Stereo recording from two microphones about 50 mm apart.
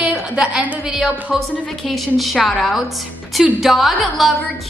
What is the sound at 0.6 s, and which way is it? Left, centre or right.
Speech, right.